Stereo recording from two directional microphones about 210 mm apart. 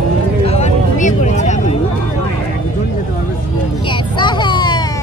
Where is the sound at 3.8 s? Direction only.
20° left (ahead or behind).